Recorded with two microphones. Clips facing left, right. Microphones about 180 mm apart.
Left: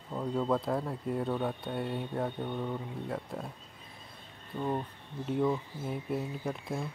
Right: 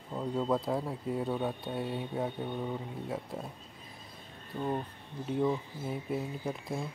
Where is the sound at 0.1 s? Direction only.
5° right (ahead or behind).